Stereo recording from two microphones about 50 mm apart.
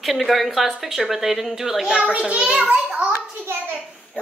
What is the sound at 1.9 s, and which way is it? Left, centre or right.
Speech, centre.